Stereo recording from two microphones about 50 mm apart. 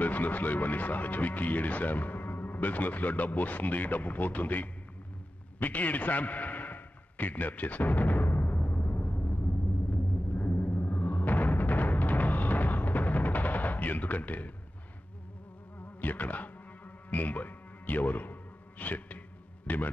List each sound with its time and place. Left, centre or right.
0.0 s speech: left
5.6 s a sound: left
8.6 s music: left
9.3 s music: left
16.0 s music: left